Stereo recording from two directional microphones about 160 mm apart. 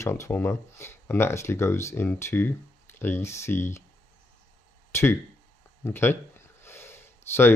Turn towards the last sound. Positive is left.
turn(degrees=15)  # may be behind; listen again after turning